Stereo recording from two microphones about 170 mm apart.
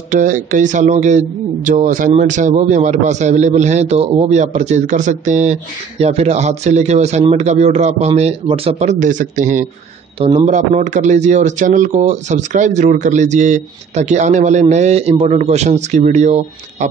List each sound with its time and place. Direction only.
0.1 s a man's voice: 50° right (ahead or behind)